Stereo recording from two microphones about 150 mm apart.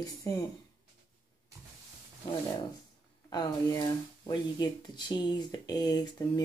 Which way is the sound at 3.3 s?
25° left (ahead or behind).